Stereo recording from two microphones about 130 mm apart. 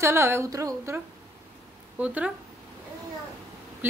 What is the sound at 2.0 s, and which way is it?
Speech, 10° right (ahead or behind).